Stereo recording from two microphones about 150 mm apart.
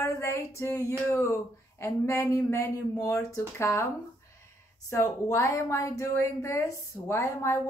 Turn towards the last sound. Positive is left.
turn(degrees=20)  # may be behind; listen again after turning